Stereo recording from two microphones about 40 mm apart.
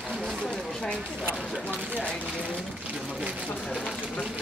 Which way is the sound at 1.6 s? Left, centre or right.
Left.